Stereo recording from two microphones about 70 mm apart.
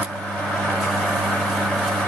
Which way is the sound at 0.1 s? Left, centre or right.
Centre.